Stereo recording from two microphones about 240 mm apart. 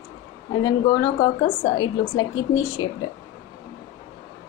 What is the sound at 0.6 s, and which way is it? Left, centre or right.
A woman's voice, centre.